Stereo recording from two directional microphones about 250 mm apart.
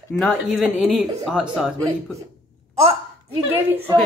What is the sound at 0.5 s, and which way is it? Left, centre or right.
A woman's voice, centre.